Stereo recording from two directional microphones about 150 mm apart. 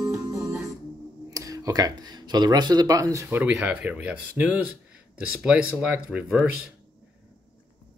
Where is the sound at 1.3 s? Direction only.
20° right (ahead or behind).